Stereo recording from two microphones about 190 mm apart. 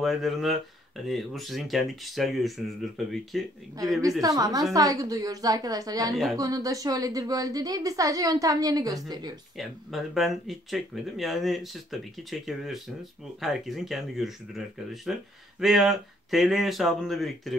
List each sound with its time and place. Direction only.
0.0 s speech: centre (ahead or behind)
4.2 s a woman's voice: 20° right (ahead or behind)
9.6 s speech: centre (ahead or behind)